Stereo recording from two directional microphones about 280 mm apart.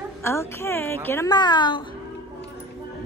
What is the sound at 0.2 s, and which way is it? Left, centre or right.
A woman's voice, centre.